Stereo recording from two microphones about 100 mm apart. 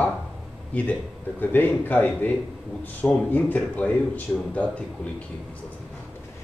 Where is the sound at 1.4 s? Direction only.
20° left (ahead or behind).